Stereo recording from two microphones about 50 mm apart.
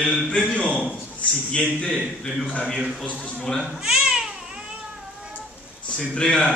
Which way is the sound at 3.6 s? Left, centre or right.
Centre.